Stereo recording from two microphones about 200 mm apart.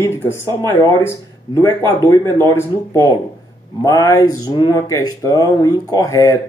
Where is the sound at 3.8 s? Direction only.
15° left (ahead or behind).